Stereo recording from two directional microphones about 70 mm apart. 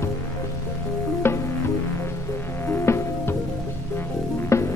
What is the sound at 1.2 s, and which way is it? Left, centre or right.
Music, left.